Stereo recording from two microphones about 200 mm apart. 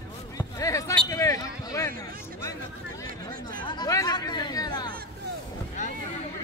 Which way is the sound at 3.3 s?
45° right (ahead or behind).